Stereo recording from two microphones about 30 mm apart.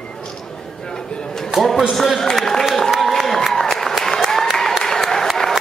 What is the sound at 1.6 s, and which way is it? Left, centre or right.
A man's voice, centre.